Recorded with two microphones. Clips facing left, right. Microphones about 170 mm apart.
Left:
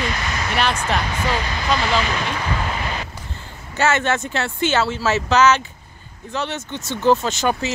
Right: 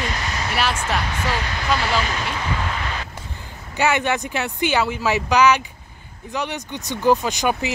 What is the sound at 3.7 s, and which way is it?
Speech, 15° right (ahead or behind).